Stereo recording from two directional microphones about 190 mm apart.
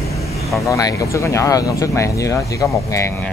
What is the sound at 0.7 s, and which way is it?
Speech, 20° left (ahead or behind).